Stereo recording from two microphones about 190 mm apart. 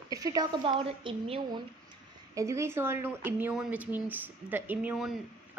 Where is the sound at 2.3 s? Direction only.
15° right (ahead or behind).